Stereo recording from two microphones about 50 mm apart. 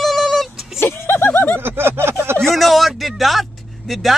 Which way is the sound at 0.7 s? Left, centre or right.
Left.